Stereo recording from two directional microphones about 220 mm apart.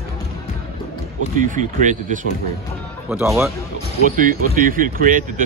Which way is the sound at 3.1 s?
10° right (ahead or behind).